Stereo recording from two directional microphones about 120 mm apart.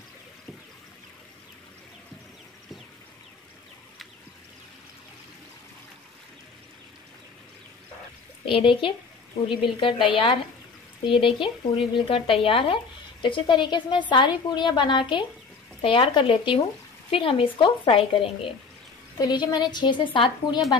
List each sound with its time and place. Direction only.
8.5 s speech: 45° left (ahead or behind)
19.1 s speech: 35° left (ahead or behind)